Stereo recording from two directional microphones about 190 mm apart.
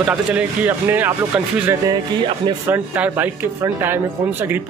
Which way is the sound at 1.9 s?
25° right (ahead or behind).